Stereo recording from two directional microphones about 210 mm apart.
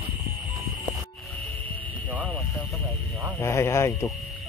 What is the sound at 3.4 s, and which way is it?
Speech, 15° left (ahead or behind).